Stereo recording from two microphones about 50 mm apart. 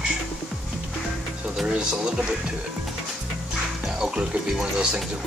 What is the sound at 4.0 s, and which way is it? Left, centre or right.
Speech, centre.